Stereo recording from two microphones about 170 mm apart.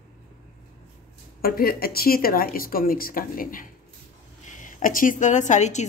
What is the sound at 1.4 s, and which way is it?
A woman's voice, 60° left (ahead or behind).